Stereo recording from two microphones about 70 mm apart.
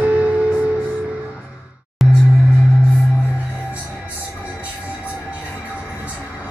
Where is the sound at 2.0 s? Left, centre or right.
Centre.